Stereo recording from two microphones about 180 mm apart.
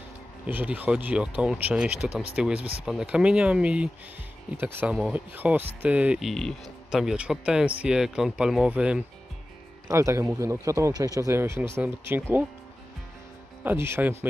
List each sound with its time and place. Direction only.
0.5 s speech: 10° right (ahead or behind)
13.7 s speech: 15° right (ahead or behind)